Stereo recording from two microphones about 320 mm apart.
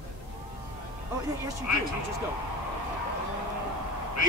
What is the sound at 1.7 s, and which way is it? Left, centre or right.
Speech, left.